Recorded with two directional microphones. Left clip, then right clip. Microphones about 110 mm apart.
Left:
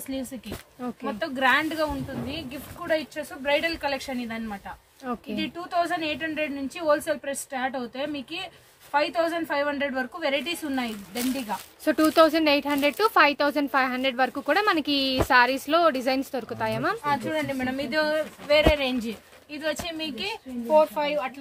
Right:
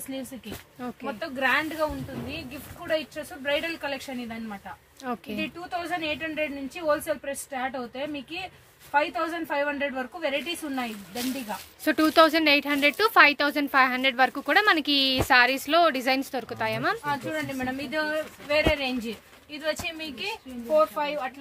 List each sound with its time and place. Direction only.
0.1 s speech: centre (ahead or behind)
2.9 s speech: 10° left (ahead or behind)
5.0 s speech: 5° right (ahead or behind)
5.4 s a woman's voice: 10° left (ahead or behind)
11.8 s speech: centre (ahead or behind)
17.0 s speech: 30° left (ahead or behind)
19.5 s speech: centre (ahead or behind)
20.6 s speech: 20° left (ahead or behind)